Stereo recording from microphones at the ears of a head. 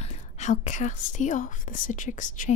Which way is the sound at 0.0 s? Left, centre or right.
Left.